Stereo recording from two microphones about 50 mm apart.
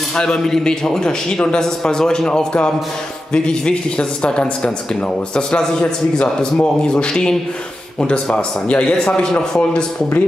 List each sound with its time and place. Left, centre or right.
0.1 s a man's voice: centre
8.4 s a man's voice: left